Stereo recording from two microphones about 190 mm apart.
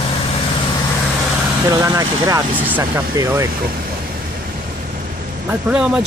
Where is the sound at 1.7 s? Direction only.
15° right (ahead or behind).